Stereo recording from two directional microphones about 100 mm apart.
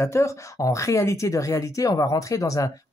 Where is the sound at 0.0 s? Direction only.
30° left (ahead or behind).